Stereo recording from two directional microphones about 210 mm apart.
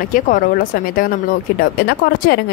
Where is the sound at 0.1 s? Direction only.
40° left (ahead or behind).